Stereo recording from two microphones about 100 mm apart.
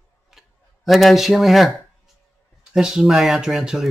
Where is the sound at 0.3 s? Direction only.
Centre (ahead or behind).